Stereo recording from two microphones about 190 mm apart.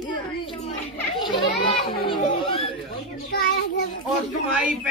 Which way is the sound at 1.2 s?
25° left (ahead or behind).